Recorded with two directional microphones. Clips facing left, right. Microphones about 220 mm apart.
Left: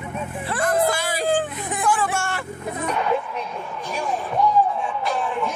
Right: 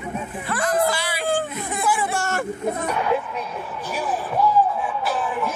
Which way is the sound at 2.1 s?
40° right (ahead or behind).